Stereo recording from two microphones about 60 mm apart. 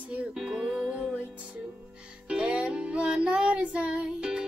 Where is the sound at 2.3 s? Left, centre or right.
Centre.